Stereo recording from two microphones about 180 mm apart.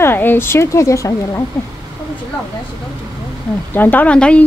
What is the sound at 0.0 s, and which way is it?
Speech, 10° left (ahead or behind).